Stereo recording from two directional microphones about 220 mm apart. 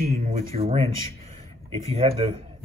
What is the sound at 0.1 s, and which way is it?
Speech, 30° right (ahead or behind).